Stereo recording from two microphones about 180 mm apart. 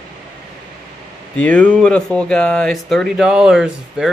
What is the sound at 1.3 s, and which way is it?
Speech, 5° left (ahead or behind).